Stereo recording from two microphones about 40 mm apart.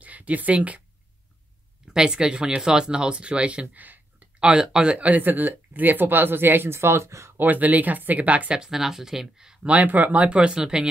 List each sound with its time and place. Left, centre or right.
0.0 s a sound: right
2.0 s speech: centre
3.7 s speech: right
4.4 s speech: right
4.9 s speech: right
7.4 s speech: right
8.5 s speech: centre
9.8 s speech: right
10.1 s speech: right